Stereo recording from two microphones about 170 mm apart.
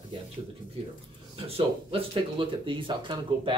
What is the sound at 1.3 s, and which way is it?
Speech, 35° right (ahead or behind).